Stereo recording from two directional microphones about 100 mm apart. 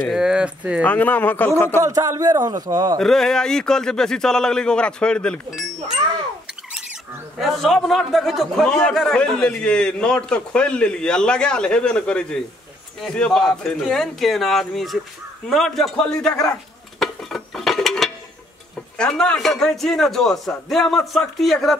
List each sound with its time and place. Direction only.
0.0 s speech: 5° right (ahead or behind)
0.8 s a man's voice: 15° left (ahead or behind)
1.8 s a man's voice: 35° right (ahead or behind)
3.0 s a man's voice: 5° left (ahead or behind)
7.3 s a man's voice: centre (ahead or behind)
17.0 s a sound: centre (ahead or behind)
18.9 s a man's voice: 10° left (ahead or behind)